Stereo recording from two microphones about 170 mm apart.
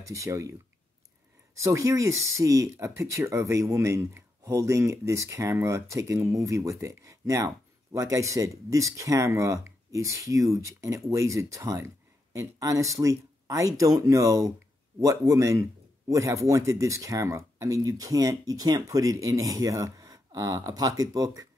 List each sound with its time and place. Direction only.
0.1 s speech: 20° right (ahead or behind)
1.6 s speech: 15° right (ahead or behind)